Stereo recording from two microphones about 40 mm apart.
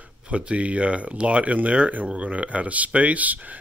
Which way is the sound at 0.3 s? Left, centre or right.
Right.